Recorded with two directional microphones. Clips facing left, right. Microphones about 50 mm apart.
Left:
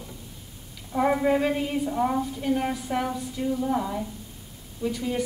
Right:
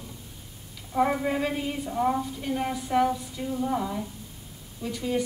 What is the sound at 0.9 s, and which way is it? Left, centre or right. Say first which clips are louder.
A woman's voice: left 3 dB; centre.